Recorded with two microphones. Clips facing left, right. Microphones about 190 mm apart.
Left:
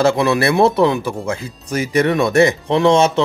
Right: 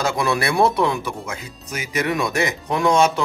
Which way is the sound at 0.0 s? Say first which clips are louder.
Left 7 dB; 25° left (ahead or behind).